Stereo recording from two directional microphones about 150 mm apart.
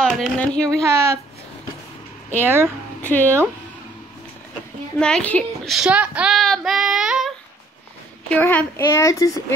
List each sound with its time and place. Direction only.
0.0 s speech: 5° left (ahead or behind)
2.4 s speech: 15° right (ahead or behind)
3.0 s speech: 10° left (ahead or behind)
4.9 s speech: 5° left (ahead or behind)
5.8 s speech: 10° right (ahead or behind)
8.3 s speech: 10° left (ahead or behind)